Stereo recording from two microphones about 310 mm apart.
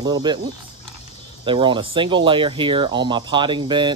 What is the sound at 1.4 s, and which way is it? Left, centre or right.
Speech, centre.